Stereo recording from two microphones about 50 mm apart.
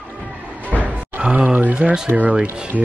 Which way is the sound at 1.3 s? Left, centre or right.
Right.